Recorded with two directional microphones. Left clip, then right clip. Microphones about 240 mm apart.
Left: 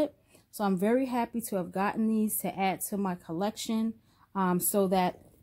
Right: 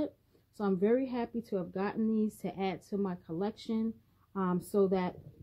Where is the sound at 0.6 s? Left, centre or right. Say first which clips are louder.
Left 2 dB; left.